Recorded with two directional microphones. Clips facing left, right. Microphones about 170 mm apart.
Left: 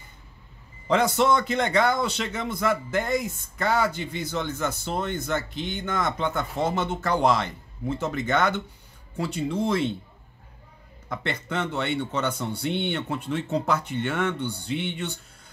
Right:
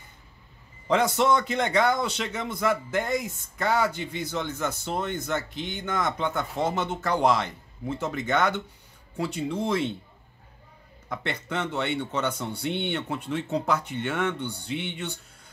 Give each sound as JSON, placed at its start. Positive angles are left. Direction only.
{"t": 0.8, "sound": "a man's voice", "side_deg": -15}
{"t": 11.1, "sound": "a man's voice", "side_deg": -15}